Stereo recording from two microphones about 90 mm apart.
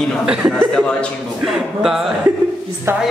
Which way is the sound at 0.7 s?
5° left (ahead or behind).